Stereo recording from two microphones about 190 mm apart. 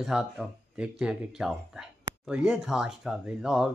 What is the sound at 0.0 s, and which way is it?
Speech, centre (ahead or behind).